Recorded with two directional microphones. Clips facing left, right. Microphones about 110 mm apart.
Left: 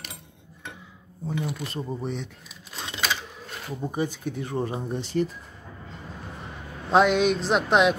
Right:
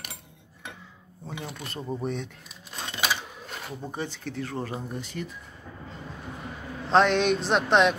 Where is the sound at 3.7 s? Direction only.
10° left (ahead or behind); by 5.3 s 30° left (ahead or behind).